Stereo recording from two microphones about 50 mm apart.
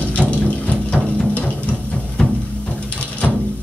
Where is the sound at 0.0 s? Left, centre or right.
Left.